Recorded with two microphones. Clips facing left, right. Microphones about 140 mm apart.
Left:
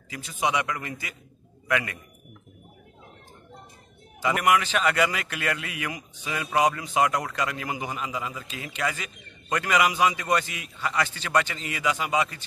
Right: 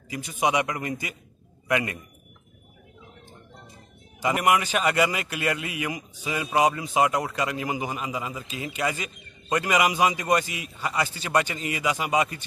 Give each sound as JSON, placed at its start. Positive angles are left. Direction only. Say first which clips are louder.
{"t": 0.4, "sound": "a man's voice", "louder": "right 2 dB", "side_deg": -15}
{"t": 4.2, "sound": "a man's voice", "louder": "even", "side_deg": -15}